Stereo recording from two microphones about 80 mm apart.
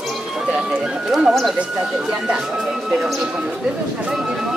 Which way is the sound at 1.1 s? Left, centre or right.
Centre.